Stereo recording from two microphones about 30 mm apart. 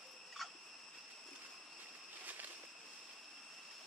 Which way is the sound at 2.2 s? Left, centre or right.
Right.